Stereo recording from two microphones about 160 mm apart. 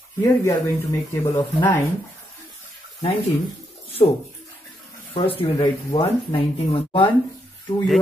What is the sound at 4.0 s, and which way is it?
Speech, 45° left (ahead or behind).